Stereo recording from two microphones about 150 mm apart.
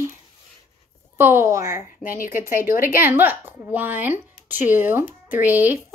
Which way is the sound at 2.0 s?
65° left (ahead or behind).